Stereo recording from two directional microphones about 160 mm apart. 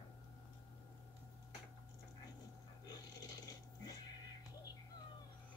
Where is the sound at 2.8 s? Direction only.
25° left (ahead or behind).